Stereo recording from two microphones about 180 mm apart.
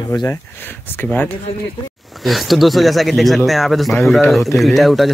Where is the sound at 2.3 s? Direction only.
Centre (ahead or behind).